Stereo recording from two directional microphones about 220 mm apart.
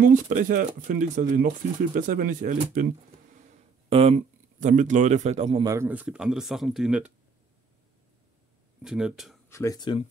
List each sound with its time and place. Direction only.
0.0 s a man's voice: 35° right (ahead or behind)
3.9 s a man's voice: 30° right (ahead or behind)
5.7 s speech: 10° right (ahead or behind)
8.8 s speech: 5° right (ahead or behind)
9.5 s speech: 15° left (ahead or behind)